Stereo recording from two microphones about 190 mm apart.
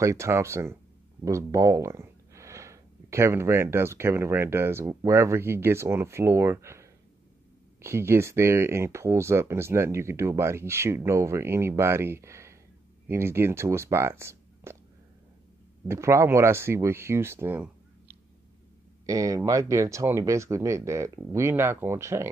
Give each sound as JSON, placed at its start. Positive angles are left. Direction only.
{"t": 0.0, "sound": "speech", "side_deg": -15}
{"t": 15.9, "sound": "speech", "side_deg": -15}
{"t": 19.0, "sound": "speech", "side_deg": -15}